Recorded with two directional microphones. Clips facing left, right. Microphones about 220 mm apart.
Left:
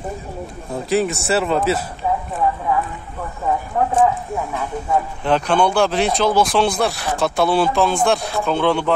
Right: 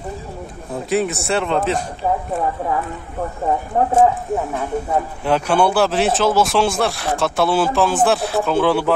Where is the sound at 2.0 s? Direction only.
45° right (ahead or behind).